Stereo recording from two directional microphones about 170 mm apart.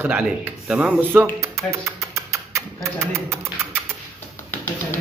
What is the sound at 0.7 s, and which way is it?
Speech, 10° right (ahead or behind).